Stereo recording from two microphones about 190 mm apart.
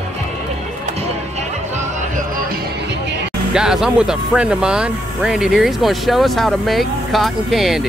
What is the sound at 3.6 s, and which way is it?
Speech, 5° right (ahead or behind).